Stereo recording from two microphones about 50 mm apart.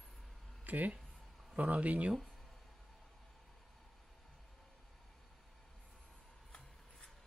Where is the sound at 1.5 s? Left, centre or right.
Right.